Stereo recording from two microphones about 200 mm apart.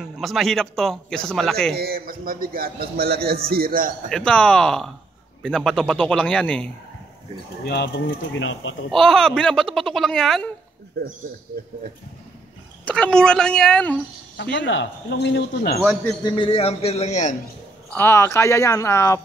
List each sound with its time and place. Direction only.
0.0 s a man's voice: centre (ahead or behind)
1.8 s a man's voice: 50° right (ahead or behind)
4.1 s a man's voice: 5° left (ahead or behind)
7.6 s speech: 55° left (ahead or behind); by 8.7 s 75° left (ahead or behind)
8.9 s a man's voice: centre (ahead or behind)
11.0 s speech: 55° right (ahead or behind)
12.8 s a man's voice: 5° left (ahead or behind)
14.3 s speech: 60° left (ahead or behind)
16.3 s a man's voice: 25° left (ahead or behind)
17.9 s speech: 10° left (ahead or behind)